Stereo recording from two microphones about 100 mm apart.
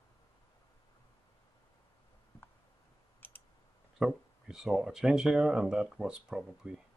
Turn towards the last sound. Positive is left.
turn(degrees=-5)  # may be behind; listen again after turning